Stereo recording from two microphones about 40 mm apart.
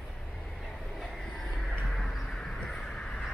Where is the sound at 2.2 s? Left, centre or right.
Centre.